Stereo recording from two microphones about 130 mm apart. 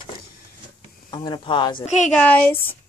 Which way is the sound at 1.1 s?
35° left (ahead or behind).